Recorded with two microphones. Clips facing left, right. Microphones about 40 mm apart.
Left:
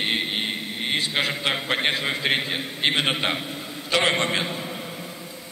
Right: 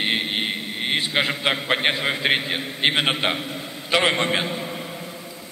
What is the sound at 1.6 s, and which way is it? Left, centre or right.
A man's voice, centre.